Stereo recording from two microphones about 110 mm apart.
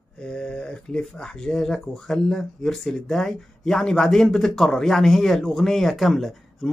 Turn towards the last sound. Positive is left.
turn(degrees=0)  # may be behind; listen again after turning